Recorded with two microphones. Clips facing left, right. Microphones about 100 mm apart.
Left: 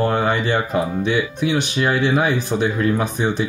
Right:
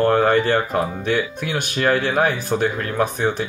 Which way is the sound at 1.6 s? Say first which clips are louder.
Even; 50° right (ahead or behind).